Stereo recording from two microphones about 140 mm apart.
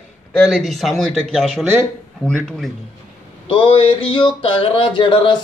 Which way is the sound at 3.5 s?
40° left (ahead or behind).